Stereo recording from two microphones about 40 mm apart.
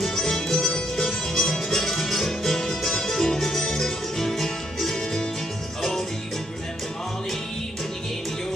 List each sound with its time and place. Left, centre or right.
0.0 s music: centre